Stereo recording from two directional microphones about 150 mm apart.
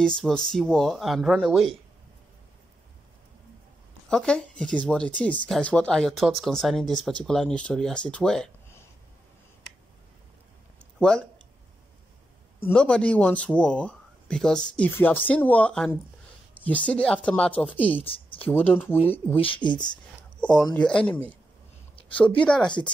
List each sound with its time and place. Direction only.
0.0 s speech: 5° left (ahead or behind)
4.1 s speech: 5° left (ahead or behind)
11.0 s speech: 5° left (ahead or behind)
12.6 s speech: 5° left (ahead or behind)
18.0 s a sound: 40° left (ahead or behind)
18.4 s speech: 10° left (ahead or behind)
19.4 s speech: 35° left (ahead or behind)
20.3 s a sound: 5° left (ahead or behind)
20.7 s speech: 5° left (ahead or behind)
22.4 s speech: 5° left (ahead or behind)
22.7 s speech: 30° left (ahead or behind)